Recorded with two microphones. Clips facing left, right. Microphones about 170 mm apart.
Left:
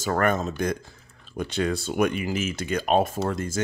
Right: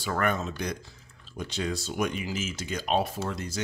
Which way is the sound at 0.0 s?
45° left (ahead or behind).